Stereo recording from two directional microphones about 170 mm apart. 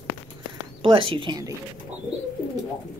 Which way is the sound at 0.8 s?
30° right (ahead or behind).